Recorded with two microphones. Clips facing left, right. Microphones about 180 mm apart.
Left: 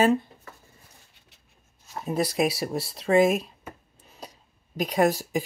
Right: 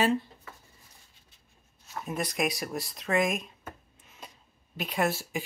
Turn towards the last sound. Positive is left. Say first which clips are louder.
# left 7 dB
turn(degrees=40)  # may be behind; listen again after turning